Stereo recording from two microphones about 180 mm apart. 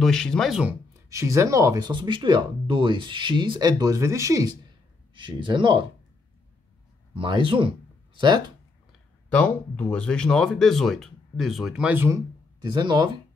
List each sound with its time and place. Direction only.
0.0 s speech: 5° left (ahead or behind)
1.1 s speech: 15° right (ahead or behind)
7.2 s speech: 30° right (ahead or behind)
9.3 s speech: 5° left (ahead or behind); by 12.2 s 10° right (ahead or behind)
12.6 s speech: 25° right (ahead or behind)